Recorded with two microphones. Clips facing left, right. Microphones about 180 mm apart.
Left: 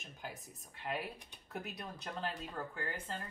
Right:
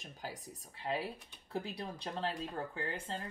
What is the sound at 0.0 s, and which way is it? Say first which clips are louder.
Speech: right 3 dB; 35° right (ahead or behind).